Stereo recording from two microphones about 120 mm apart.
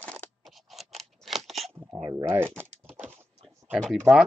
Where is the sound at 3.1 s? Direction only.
20° right (ahead or behind).